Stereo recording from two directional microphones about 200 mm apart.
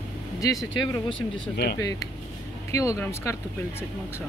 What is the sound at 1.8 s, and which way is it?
Speech, 15° left (ahead or behind).